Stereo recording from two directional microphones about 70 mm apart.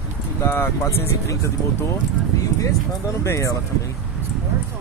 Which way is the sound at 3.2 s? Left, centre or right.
Left.